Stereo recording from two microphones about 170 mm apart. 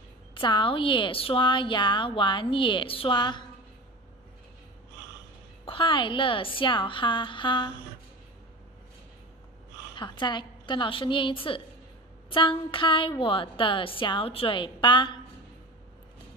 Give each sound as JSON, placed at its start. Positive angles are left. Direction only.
{"t": 0.3, "sound": "a woman's voice", "side_deg": 30}
{"t": 5.7, "sound": "a woman's voice", "side_deg": 30}
{"t": 9.9, "sound": "a woman's voice", "side_deg": 25}